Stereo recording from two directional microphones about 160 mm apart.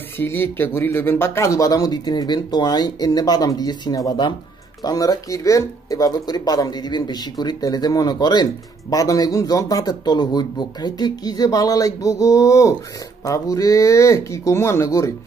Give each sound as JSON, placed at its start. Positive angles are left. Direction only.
{"t": 0.2, "sound": "speech", "side_deg": 15}